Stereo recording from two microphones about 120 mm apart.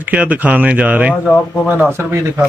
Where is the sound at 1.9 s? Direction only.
20° right (ahead or behind).